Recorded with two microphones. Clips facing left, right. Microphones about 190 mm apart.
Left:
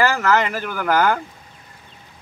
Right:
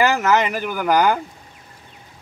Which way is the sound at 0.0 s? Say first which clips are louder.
Right 1 dB; 20° right (ahead or behind).